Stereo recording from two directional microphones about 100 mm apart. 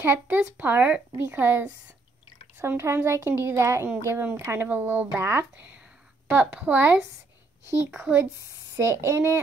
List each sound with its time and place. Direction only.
0.0 s a woman's voice: 20° right (ahead or behind)